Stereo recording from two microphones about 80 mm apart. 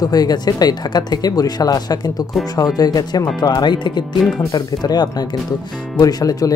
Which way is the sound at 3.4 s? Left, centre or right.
Left.